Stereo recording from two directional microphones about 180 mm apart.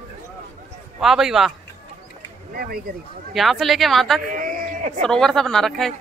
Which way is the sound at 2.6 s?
55° right (ahead or behind).